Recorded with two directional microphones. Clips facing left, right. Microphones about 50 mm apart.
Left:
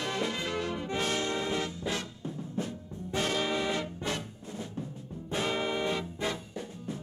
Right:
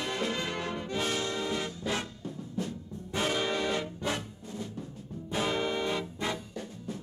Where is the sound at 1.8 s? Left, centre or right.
Centre.